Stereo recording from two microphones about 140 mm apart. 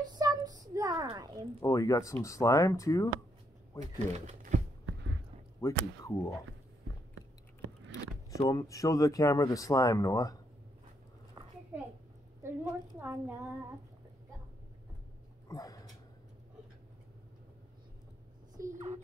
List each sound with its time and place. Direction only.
0.1 s a sound: 25° right (ahead or behind)
1.1 s speech: 30° right (ahead or behind)
1.6 s speech: 25° left (ahead or behind)
3.8 s speech: 55° right (ahead or behind)
5.6 s speech: 20° left (ahead or behind)
8.4 s speech: 25° left (ahead or behind)
11.7 s a child's voice: 10° right (ahead or behind)
12.4 s a sound: 20° right (ahead or behind)
13.0 s speech: 15° right (ahead or behind)
15.4 s dog: 25° left (ahead or behind)
18.6 s a sound: 75° right (ahead or behind)